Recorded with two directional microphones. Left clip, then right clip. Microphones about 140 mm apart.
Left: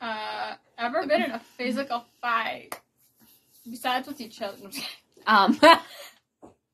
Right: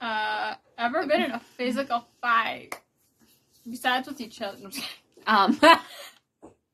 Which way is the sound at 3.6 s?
30° right (ahead or behind).